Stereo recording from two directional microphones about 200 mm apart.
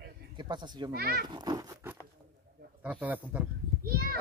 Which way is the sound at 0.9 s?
50° right (ahead or behind).